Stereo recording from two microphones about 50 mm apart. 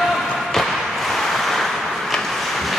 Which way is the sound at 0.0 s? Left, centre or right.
Centre.